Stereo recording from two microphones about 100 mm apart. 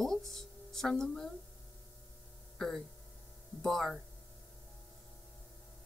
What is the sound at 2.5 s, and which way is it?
Speech, 5° left (ahead or behind).